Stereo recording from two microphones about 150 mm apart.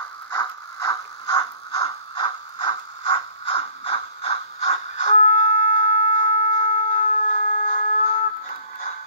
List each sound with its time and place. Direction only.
0.4 s mechanisms: 25° left (ahead or behind); by 8.2 s 55° left (ahead or behind)